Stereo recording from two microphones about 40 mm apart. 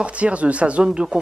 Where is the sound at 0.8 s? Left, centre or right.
Right.